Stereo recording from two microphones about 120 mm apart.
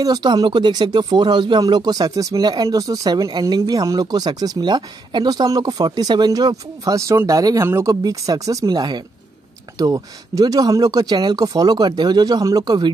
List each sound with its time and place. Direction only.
0.0 s speech: 35° right (ahead or behind)